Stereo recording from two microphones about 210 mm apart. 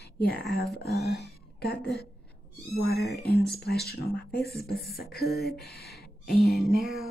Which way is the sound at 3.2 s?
50° left (ahead or behind).